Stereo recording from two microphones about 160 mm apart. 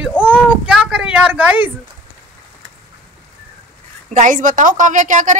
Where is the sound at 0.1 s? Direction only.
10° left (ahead or behind).